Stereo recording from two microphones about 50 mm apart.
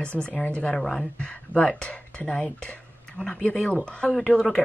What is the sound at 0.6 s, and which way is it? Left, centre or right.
Speech, centre.